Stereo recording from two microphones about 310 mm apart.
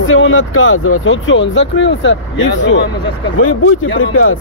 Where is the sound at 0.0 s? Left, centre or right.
Left.